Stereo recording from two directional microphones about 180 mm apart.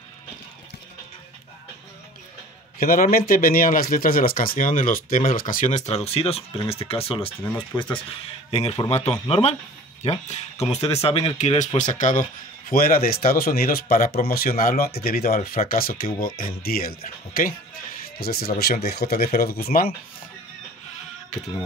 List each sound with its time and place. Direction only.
2.8 s speech: 55° left (ahead or behind); by 7.3 s 30° left (ahead or behind)
8.5 s speech: 35° left (ahead or behind); by 19.9 s 55° left (ahead or behind)